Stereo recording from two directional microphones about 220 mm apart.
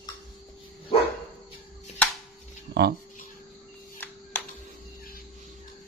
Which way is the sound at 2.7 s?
45° right (ahead or behind).